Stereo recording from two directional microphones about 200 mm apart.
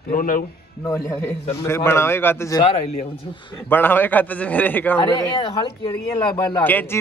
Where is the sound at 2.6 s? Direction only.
30° left (ahead or behind).